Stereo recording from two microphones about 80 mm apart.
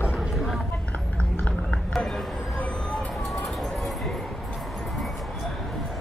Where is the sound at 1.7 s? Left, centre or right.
Centre.